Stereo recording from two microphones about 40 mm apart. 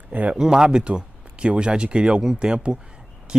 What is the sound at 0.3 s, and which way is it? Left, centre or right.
Speech, centre.